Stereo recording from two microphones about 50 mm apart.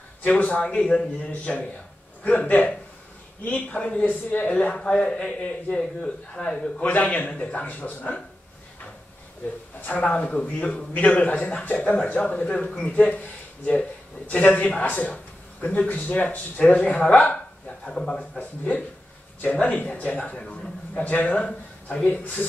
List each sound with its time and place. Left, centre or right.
0.2 s speech: left
6.8 s speech: left
9.8 s speech: left
19.6 s a man's voice: left